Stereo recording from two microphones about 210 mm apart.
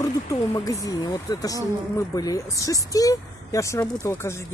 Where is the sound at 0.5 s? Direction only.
15° left (ahead or behind).